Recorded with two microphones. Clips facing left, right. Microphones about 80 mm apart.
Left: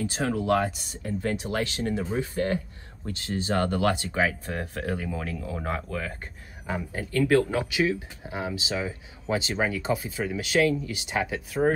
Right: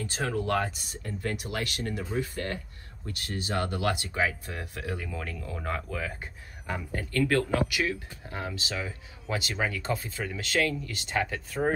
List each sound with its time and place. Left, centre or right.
0.0 s speech: centre
1.2 s speech: left
5.1 s speech: centre
5.6 s speech: left
5.9 s speech: centre
6.7 s speech: centre